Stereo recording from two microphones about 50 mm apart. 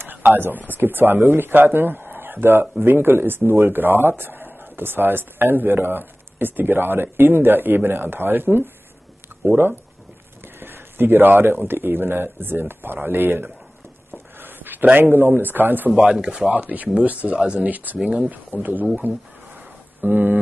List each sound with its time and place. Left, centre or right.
0.0 s a sound: right
0.4 s speech: right
14.1 s a sound: right
15.0 s speech: right
15.9 s speech: centre
17.6 s speech: right
17.9 s speech: centre
18.3 s speech: right
20.0 s speech: right